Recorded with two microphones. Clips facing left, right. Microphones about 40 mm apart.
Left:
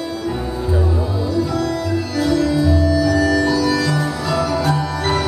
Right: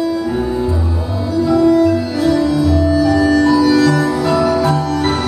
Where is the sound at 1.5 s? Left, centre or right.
Centre.